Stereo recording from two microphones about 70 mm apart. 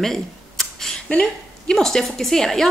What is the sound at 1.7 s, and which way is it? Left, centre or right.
Speech, centre.